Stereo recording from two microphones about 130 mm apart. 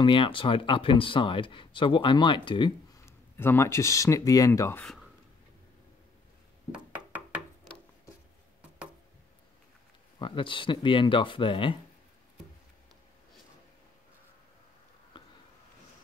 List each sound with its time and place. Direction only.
0.0 s speech: 40° left (ahead or behind)
3.3 s speech: 20° left (ahead or behind)
4.8 s a sound: centre (ahead or behind)
6.7 s knock: 10° right (ahead or behind)
10.1 s speech: 40° left (ahead or behind)
15.2 s a sound: 40° left (ahead or behind)